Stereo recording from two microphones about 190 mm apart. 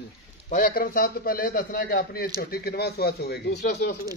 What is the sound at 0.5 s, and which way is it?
A man's voice, 50° left (ahead or behind).